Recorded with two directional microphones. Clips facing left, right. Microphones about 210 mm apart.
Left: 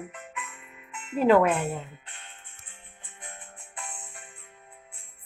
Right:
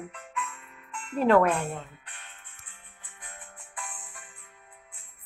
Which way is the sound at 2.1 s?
25° left (ahead or behind).